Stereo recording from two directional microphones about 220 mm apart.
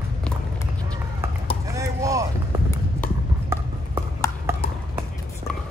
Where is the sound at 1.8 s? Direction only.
15° right (ahead or behind).